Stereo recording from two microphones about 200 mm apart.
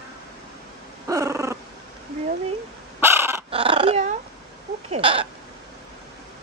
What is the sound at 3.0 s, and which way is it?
Dog, 15° right (ahead or behind).